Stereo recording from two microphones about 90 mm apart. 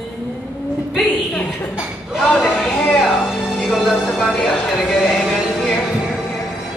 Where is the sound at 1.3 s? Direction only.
15° left (ahead or behind).